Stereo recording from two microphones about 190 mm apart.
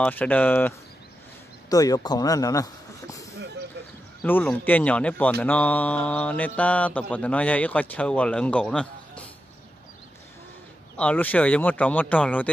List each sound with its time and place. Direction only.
0.0 s mantra: 10° left (ahead or behind)
1.7 s speech: 20° left (ahead or behind)
4.2 s mantra: 10° left (ahead or behind)
11.0 s mantra: 10° left (ahead or behind)